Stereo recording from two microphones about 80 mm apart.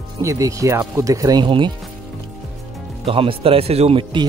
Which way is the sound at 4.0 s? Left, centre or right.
Right.